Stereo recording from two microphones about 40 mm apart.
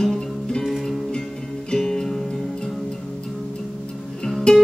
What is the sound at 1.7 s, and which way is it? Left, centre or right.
Music, centre.